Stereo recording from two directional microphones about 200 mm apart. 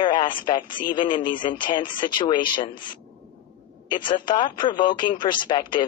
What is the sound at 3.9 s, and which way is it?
A man's voice, 25° left (ahead or behind).